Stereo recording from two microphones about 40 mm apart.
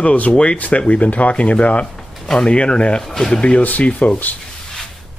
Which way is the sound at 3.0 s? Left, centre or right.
Centre.